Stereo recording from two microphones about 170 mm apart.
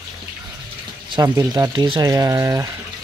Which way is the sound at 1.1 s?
20° right (ahead or behind).